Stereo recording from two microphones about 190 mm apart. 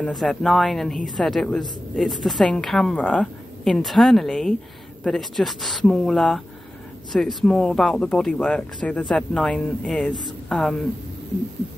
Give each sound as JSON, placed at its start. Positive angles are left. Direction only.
{"t": 0.0, "sound": "a woman's voice", "side_deg": 0}